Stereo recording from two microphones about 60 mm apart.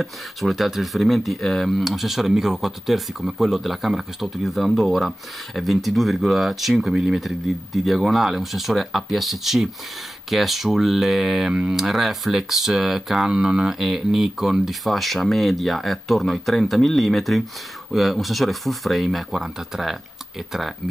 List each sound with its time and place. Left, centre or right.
0.0 s speech: centre
11.5 s speech: centre
11.8 s speech: centre